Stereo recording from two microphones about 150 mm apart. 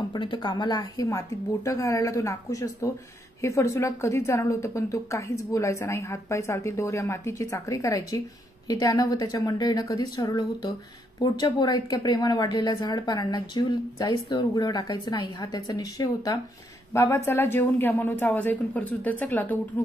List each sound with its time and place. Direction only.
0.1 s a woman's voice: 30° left (ahead or behind); by 19.6 s 10° left (ahead or behind)